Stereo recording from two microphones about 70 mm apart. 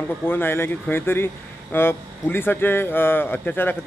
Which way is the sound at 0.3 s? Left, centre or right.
Left.